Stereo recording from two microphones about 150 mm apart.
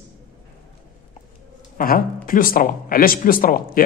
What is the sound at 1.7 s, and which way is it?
Speech, 70° left (ahead or behind).